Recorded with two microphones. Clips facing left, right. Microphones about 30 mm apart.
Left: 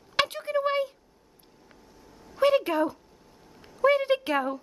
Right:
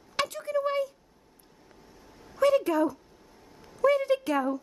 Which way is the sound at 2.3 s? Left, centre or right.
Left.